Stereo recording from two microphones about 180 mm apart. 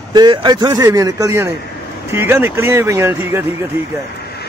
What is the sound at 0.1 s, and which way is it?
A man's voice, 25° right (ahead or behind).